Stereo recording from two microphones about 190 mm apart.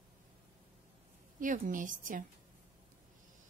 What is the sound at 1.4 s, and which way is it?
Speech, 45° right (ahead or behind).